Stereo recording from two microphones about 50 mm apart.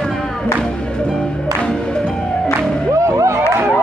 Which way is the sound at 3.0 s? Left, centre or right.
Right.